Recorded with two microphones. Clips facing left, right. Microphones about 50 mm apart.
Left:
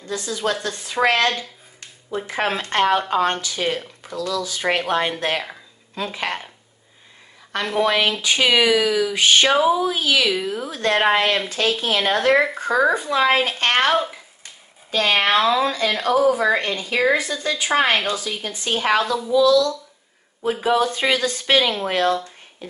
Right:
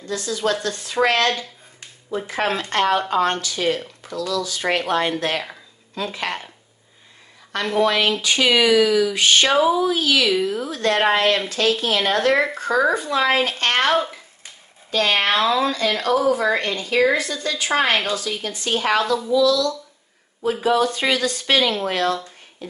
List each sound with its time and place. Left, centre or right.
0.0 s a woman's voice: left
7.8 s speech: centre
10.2 s a woman's voice: centre
19.3 s speech: left